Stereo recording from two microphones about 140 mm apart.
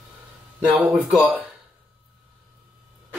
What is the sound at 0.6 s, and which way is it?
Speech, 10° right (ahead or behind).